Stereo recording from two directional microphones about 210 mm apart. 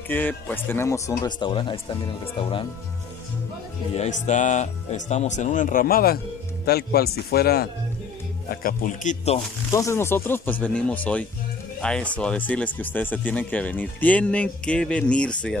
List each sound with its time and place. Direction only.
0.1 s speech: 10° left (ahead or behind)
3.9 s speech: 35° left (ahead or behind)
9.7 s speech: 15° left (ahead or behind)